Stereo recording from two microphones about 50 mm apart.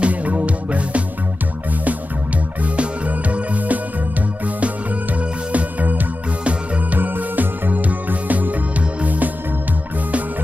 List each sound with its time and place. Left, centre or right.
0.0 s music: right
2.6 s music: right
5.5 s music: right